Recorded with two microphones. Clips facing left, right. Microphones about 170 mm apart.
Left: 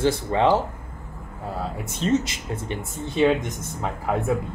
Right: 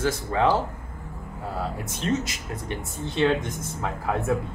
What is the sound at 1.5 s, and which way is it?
Speech, centre (ahead or behind).